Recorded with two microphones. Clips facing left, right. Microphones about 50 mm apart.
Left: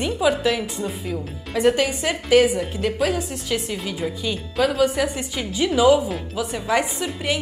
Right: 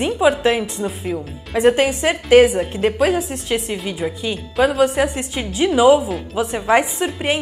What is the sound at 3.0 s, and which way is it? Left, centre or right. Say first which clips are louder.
Speech: right 5 dB; centre.